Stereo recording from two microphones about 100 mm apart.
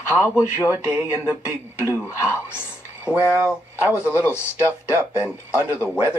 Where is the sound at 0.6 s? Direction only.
15° right (ahead or behind).